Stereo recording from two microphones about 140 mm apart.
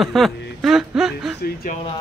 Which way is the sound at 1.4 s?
90° left.